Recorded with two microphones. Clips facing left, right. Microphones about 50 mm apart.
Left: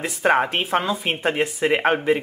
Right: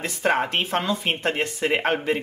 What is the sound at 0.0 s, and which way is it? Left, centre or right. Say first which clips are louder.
Speech: left 3 dB; centre.